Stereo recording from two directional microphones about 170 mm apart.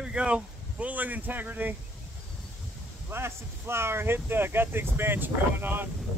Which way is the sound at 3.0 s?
15° right (ahead or behind).